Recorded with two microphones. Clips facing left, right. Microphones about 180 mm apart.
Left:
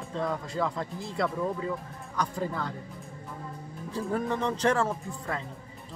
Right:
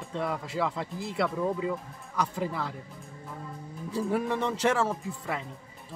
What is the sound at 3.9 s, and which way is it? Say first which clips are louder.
Speech: right 1 dB; 10° right (ahead or behind).